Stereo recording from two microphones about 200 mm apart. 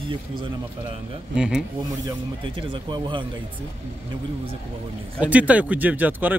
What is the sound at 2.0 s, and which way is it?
Speech, 25° right (ahead or behind).